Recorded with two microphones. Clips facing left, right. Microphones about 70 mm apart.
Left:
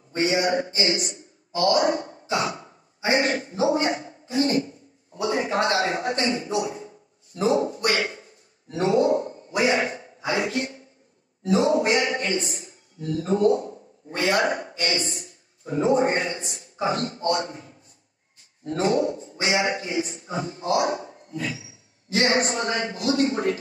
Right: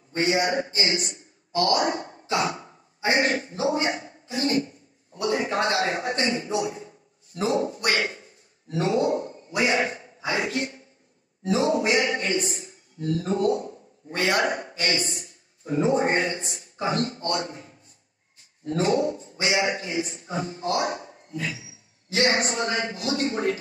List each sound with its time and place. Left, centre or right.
0.2 s a man's voice: right
1.7 s a man's voice: left
2.0 s speech: right
3.1 s a man's voice: left
3.7 s a sound: left
5.9 s a man's voice: right
6.1 s a man's voice: left
7.4 s a sound: left
13.3 s a man's voice: left
16.0 s a man's voice: right
16.8 s a man's voice: left